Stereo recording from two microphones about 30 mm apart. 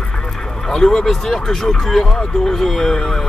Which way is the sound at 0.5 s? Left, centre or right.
Centre.